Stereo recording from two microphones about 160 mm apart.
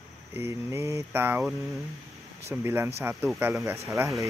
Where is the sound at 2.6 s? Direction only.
15° right (ahead or behind).